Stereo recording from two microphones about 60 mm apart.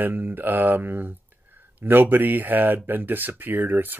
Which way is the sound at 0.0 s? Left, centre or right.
Right.